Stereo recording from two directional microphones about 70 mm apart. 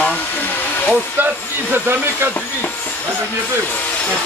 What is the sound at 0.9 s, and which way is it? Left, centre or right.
Speech, right.